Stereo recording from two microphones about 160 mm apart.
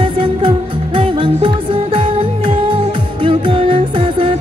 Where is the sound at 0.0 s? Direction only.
35° right (ahead or behind).